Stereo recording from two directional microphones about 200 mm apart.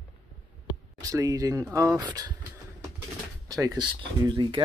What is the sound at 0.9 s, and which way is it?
Speech, 15° right (ahead or behind).